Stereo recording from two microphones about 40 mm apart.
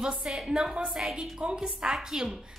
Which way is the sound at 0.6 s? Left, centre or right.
Right.